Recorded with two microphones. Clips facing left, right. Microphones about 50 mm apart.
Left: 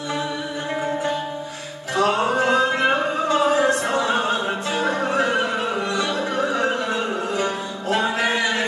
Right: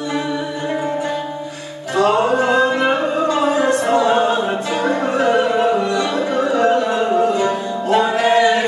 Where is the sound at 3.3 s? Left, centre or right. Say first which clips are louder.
Right 1 dB; right.